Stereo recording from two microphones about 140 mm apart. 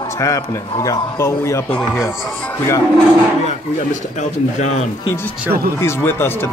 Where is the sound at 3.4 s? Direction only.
60° left (ahead or behind).